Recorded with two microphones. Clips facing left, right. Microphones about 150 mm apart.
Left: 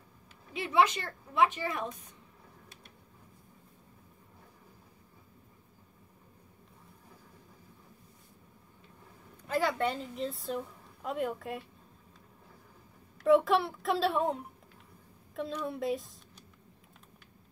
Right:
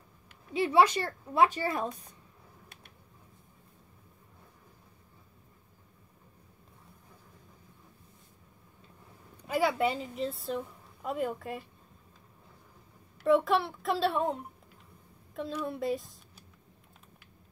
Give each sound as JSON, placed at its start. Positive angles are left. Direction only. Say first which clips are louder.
{"t": 0.5, "sound": "a woman's voice", "louder": "right 3 dB", "side_deg": -35}
{"t": 9.5, "sound": "a woman's voice", "louder": "right 2 dB", "side_deg": -10}
{"t": 13.2, "sound": "a woman's voice", "louder": "left 1 dB", "side_deg": 0}